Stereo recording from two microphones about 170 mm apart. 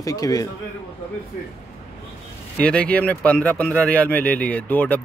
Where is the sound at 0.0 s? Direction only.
20° left (ahead or behind).